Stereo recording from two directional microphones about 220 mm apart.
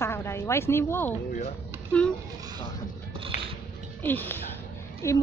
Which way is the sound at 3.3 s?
30° left (ahead or behind).